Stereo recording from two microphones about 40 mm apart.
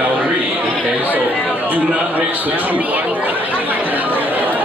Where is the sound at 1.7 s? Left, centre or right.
Right.